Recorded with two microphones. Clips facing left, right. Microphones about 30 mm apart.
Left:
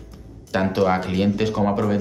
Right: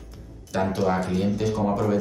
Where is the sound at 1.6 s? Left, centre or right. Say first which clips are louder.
Even; left.